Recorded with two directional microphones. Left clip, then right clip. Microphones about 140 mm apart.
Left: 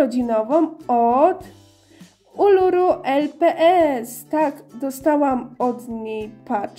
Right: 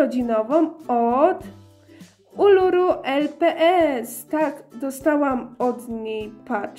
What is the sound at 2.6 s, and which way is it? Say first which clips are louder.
Speech: left 2 dB; 30° left (ahead or behind).